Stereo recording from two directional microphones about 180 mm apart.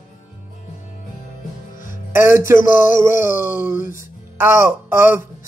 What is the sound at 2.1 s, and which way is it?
Speech, 15° right (ahead or behind).